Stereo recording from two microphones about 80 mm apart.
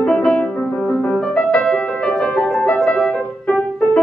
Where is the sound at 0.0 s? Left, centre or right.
Centre.